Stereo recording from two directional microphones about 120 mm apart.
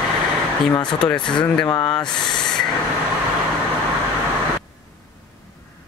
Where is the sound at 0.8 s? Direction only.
5° left (ahead or behind).